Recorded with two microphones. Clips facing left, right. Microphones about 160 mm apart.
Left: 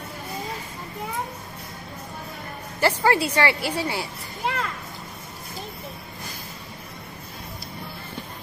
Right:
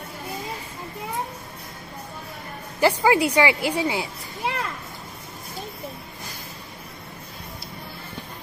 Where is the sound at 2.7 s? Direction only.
15° right (ahead or behind).